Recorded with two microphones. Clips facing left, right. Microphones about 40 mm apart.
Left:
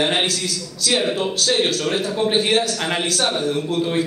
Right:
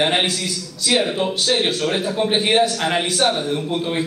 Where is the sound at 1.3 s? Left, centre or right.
Centre.